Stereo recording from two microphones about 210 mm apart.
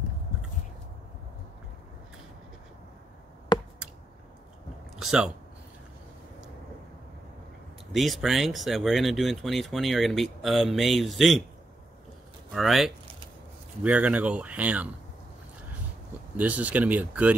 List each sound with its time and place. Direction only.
3.5 s chop: 20° left (ahead or behind)
4.9 s speech: 5° right (ahead or behind)
7.9 s speech: centre (ahead or behind)
12.5 s speech: centre (ahead or behind)
16.3 s speech: 5° right (ahead or behind)